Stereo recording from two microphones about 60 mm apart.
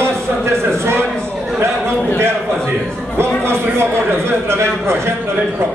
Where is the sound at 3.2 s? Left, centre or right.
Right.